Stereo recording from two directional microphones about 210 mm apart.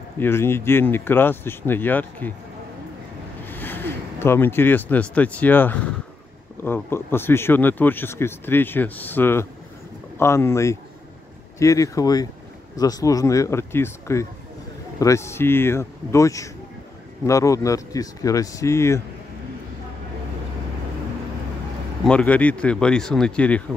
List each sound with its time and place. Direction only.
0.2 s speech: 10° left (ahead or behind)
3.4 s speech: 10° left (ahead or behind)
22.0 s speech: 5° left (ahead or behind)